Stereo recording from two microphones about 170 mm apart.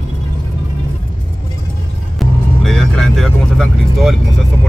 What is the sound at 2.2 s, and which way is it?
Vehicle, centre (ahead or behind).